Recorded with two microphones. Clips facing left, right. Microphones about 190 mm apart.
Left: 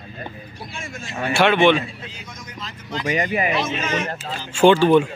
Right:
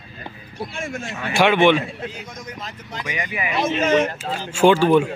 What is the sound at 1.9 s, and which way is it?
Speech, 55° right (ahead or behind).